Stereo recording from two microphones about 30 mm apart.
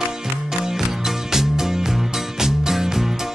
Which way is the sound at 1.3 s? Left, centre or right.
Centre.